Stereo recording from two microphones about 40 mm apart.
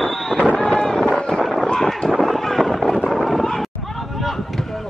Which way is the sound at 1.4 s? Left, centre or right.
Centre.